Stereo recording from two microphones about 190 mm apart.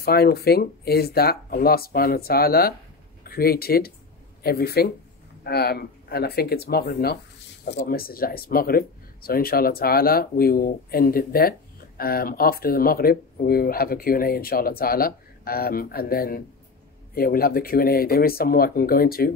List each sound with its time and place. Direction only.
0.0 s speech: 55° left (ahead or behind)